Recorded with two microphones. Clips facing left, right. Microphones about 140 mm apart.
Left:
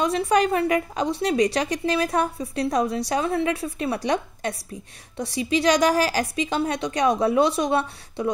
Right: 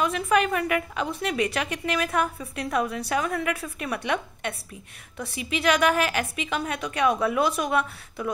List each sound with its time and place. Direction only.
0.3 s a woman's voice: 30° left (ahead or behind)